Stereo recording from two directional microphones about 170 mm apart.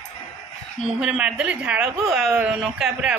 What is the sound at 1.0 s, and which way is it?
Speech, 5° right (ahead or behind).